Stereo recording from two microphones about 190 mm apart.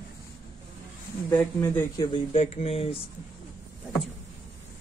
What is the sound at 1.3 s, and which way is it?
Speech, 10° left (ahead or behind).